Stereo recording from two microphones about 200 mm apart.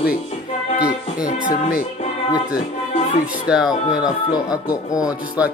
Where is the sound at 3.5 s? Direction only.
5° right (ahead or behind).